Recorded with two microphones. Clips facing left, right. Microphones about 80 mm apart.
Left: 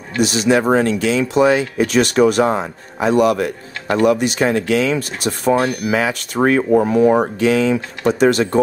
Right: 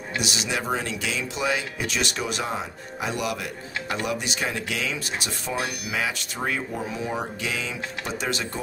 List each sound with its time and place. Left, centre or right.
0.2 s speech: left